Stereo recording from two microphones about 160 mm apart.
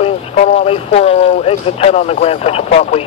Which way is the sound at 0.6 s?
40° left (ahead or behind).